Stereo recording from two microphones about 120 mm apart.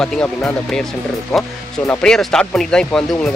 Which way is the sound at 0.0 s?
5° left (ahead or behind).